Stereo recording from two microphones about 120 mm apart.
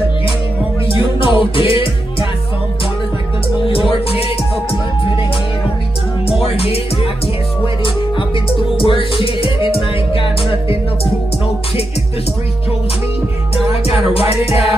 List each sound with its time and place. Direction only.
0.9 s music: 45° left (ahead or behind)
3.6 s music: 45° left (ahead or behind)
6.4 s music: 55° left (ahead or behind)
8.5 s music: 50° left (ahead or behind)
14.1 s music: 55° left (ahead or behind)